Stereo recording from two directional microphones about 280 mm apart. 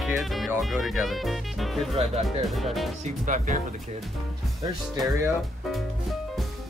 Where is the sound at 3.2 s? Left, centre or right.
Right.